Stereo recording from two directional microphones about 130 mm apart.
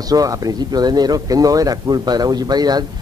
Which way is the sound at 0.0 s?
30° right (ahead or behind).